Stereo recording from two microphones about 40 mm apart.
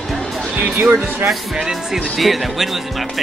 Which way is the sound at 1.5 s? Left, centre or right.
Centre.